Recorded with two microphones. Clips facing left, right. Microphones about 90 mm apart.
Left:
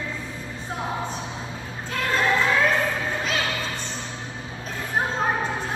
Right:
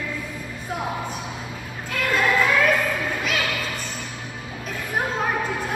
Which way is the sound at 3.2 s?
30° left (ahead or behind).